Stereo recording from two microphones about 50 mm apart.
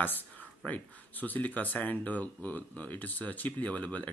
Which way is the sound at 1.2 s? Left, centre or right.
Left.